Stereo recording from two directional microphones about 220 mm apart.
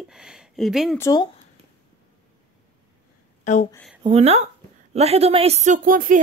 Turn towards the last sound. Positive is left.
turn(degrees=-40)  # may be behind; listen again after turning